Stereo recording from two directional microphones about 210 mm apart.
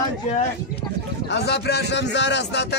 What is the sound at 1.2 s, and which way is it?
A man's voice, 55° left (ahead or behind).